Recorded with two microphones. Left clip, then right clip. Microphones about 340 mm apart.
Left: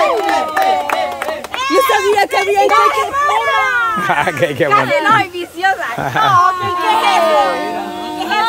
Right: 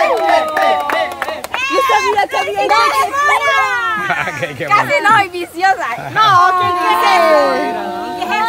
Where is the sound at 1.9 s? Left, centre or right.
Left.